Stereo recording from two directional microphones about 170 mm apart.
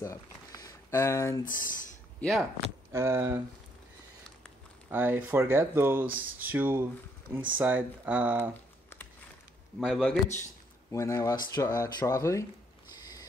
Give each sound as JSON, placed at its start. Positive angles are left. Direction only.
{"t": 0.0, "sound": "speech", "side_deg": 20}
{"t": 1.4, "sound": "speech", "side_deg": 55}
{"t": 2.1, "sound": "speech", "side_deg": 0}
{"t": 2.9, "sound": "speech", "side_deg": -15}
{"t": 4.8, "sound": "speech", "side_deg": -10}
{"t": 9.8, "sound": "speech", "side_deg": 0}
{"t": 10.9, "sound": "speech", "side_deg": 20}